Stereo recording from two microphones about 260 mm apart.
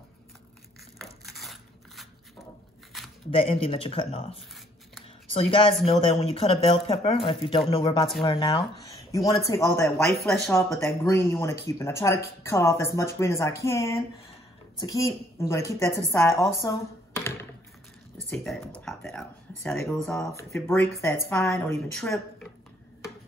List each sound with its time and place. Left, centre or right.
0.9 s crushing: centre
3.3 s speech: left
5.0 s a sound: left
5.9 s a woman's voice: left; by 22.5 s centre